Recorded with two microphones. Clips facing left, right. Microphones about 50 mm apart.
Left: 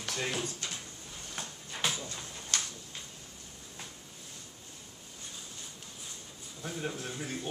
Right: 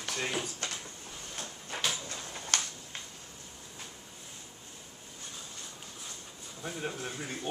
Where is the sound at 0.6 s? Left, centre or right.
Right.